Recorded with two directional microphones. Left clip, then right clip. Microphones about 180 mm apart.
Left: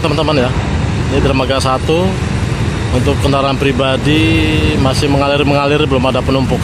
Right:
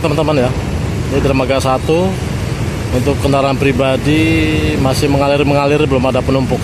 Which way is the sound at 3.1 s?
10° right (ahead or behind).